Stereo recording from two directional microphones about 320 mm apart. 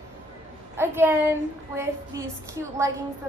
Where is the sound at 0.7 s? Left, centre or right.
Centre.